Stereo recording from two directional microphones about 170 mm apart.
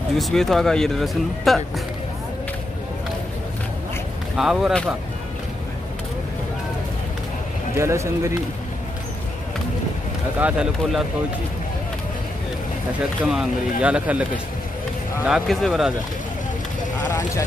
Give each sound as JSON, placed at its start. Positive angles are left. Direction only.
{"t": 0.2, "sound": "speech", "side_deg": 0}
{"t": 4.4, "sound": "speech", "side_deg": -5}
{"t": 7.7, "sound": "speech", "side_deg": -15}
{"t": 10.4, "sound": "speech", "side_deg": -5}
{"t": 13.3, "sound": "speech", "side_deg": -5}
{"t": 15.2, "sound": "speech", "side_deg": 0}
{"t": 17.1, "sound": "speech", "side_deg": 20}